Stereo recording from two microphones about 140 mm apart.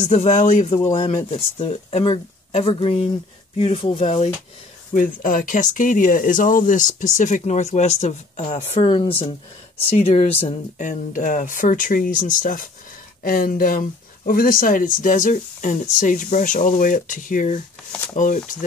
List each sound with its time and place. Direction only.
0.0 s speech: 55° left (ahead or behind)
4.9 s a woman's voice: 75° left (ahead or behind); by 9.3 s 40° left (ahead or behind)
9.8 s speech: 50° left (ahead or behind)
10.8 s speech: 65° left (ahead or behind)
13.2 s speech: 85° left; by 18.6 s 65° left (ahead or behind)